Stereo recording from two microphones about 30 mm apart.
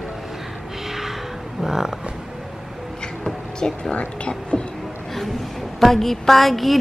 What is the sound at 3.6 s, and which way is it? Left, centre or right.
Speech, left.